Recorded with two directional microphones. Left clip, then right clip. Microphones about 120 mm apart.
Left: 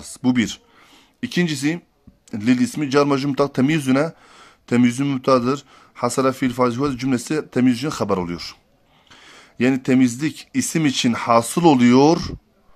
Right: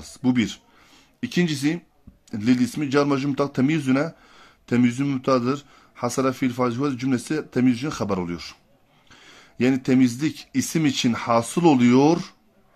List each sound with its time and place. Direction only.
0.0 s speech: 30° left (ahead or behind)